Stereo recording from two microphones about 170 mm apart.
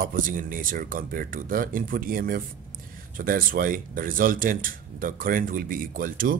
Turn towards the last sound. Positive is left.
turn(degrees=-55)  # may be behind; listen again after turning